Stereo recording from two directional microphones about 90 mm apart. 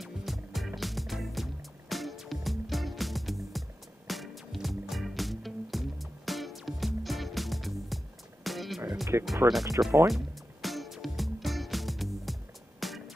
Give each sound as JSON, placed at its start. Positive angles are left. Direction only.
{"t": 0.0, "sound": "music", "side_deg": 0}
{"t": 9.1, "sound": "speech", "side_deg": -30}
{"t": 10.0, "sound": "music", "side_deg": 0}